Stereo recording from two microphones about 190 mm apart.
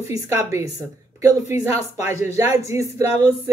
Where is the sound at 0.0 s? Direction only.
15° right (ahead or behind).